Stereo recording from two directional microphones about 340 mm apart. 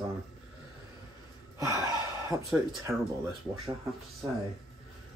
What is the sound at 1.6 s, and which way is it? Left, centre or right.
Gasp, centre.